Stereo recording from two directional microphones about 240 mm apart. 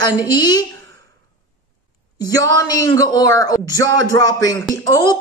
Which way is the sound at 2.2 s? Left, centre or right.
Centre.